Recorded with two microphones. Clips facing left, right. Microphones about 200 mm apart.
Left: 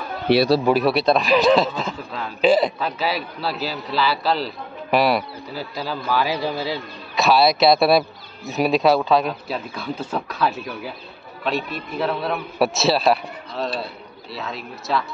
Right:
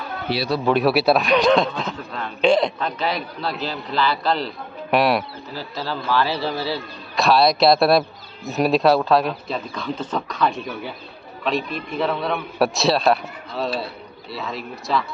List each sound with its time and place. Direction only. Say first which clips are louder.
0.7 s a man's voice: even; centre (ahead or behind)
5.5 s a man's voice: even; 10° left (ahead or behind)
7.2 s a man's voice: even; centre (ahead or behind)